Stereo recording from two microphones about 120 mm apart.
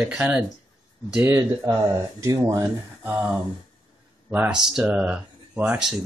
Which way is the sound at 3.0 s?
15° right (ahead or behind).